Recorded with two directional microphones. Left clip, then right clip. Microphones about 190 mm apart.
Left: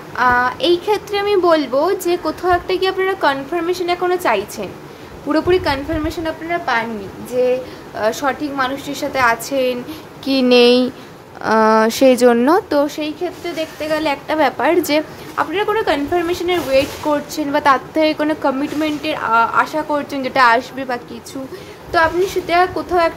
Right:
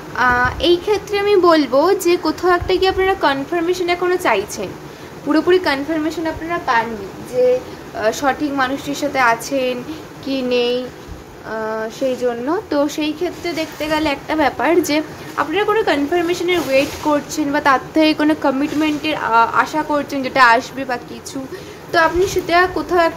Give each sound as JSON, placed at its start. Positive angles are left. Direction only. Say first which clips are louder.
{"t": 0.1, "sound": "a woman's voice", "louder": "left 1 dB", "side_deg": 5}
{"t": 8.0, "sound": "a woman's voice", "louder": "right 1 dB", "side_deg": 10}
{"t": 10.2, "sound": "speech", "louder": "left 6 dB", "side_deg": 30}
{"t": 11.4, "sound": "speech", "louder": "left 10 dB", "side_deg": 45}
{"t": 12.8, "sound": "a woman's voice", "louder": "right 1 dB", "side_deg": 5}